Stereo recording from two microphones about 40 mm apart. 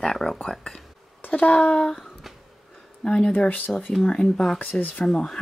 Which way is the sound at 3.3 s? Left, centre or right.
Left.